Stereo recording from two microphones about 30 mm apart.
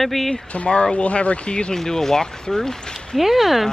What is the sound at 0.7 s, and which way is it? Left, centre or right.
Speech, left.